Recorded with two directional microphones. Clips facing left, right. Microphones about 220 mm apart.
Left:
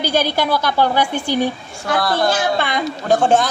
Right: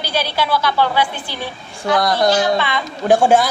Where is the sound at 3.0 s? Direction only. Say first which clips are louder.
Right 3 dB; 10° right (ahead or behind).